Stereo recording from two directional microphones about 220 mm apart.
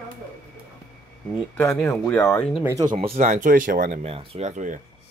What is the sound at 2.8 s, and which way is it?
Speech, 25° right (ahead or behind).